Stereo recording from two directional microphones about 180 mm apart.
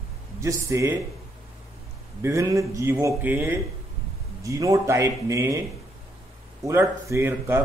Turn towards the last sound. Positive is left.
turn(degrees=-10)  # may be behind; listen again after turning